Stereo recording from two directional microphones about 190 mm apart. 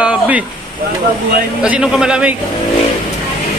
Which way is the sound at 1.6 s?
5° right (ahead or behind).